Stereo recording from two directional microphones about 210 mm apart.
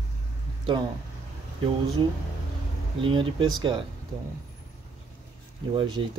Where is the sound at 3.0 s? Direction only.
20° right (ahead or behind).